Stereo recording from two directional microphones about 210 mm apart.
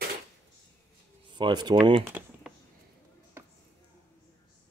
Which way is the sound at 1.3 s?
20° right (ahead or behind).